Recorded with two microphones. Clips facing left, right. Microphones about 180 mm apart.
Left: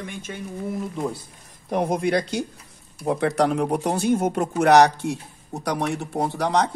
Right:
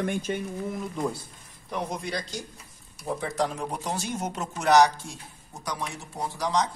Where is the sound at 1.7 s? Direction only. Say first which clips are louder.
Left 10 dB; 55° left (ahead or behind).